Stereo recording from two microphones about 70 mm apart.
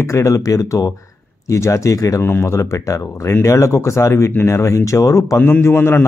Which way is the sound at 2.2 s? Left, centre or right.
Left.